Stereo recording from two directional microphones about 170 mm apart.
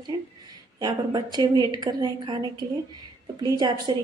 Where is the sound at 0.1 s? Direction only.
25° right (ahead or behind).